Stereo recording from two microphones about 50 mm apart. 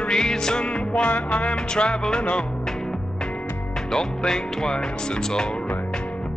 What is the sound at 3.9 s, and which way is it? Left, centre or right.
Music, centre.